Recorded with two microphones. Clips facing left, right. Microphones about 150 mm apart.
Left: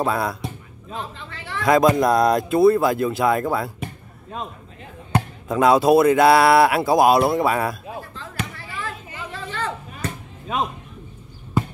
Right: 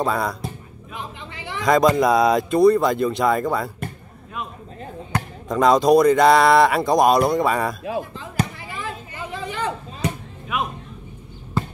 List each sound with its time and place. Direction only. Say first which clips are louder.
0.0 s speech: even; centre (ahead or behind)
1.3 s a sound: right 1 dB; 15° right (ahead or behind)
1.6 s speech: even; 5° left (ahead or behind)
5.5 s speech: even; 5° left (ahead or behind)
8.5 s chop: right 1 dB; 15° right (ahead or behind)
10.5 s a man's voice: left 2 dB; 30° left (ahead or behind)